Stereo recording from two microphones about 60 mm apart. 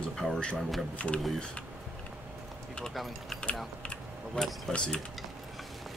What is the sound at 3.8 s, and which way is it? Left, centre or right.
Typing, centre.